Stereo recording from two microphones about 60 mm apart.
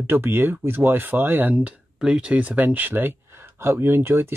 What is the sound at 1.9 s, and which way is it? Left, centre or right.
Speech, centre.